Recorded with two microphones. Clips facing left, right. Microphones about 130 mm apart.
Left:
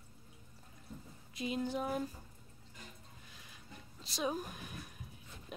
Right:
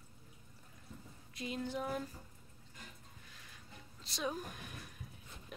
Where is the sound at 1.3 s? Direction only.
20° left (ahead or behind).